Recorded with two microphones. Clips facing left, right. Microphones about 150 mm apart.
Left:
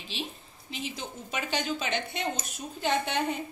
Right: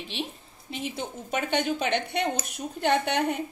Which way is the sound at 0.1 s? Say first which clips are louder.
Even; 60° right (ahead or behind).